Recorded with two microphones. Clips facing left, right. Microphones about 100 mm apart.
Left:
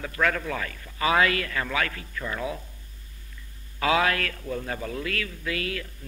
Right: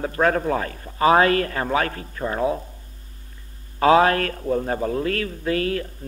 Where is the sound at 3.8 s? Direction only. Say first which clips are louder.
Right 8 dB; 40° right (ahead or behind).